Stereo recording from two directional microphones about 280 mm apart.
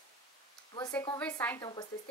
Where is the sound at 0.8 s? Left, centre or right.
Centre.